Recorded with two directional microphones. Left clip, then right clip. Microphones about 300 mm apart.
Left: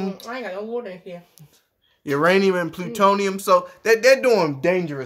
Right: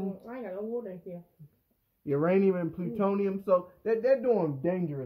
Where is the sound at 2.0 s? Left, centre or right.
Left.